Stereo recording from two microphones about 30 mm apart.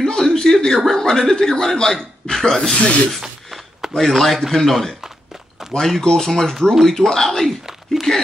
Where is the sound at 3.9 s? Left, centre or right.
Centre.